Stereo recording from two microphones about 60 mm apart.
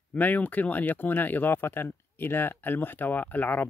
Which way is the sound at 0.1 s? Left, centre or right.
Left.